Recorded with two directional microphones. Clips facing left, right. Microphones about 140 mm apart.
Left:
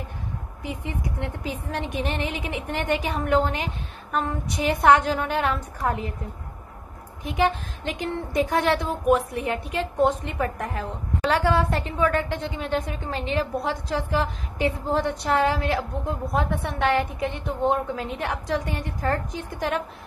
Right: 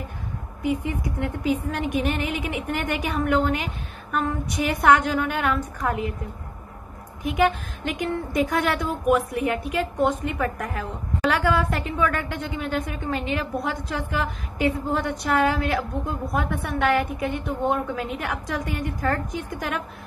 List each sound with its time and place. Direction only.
0.7 s a woman's voice: 25° left (ahead or behind)
7.2 s a woman's voice: 30° left (ahead or behind)